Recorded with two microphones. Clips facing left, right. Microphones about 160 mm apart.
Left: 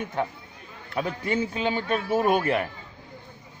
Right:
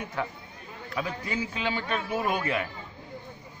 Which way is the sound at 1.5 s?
40° left (ahead or behind).